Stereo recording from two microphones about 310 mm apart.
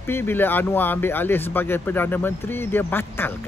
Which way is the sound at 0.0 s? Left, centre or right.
Centre.